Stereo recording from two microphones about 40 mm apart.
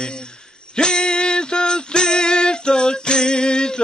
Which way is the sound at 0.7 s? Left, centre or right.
Centre.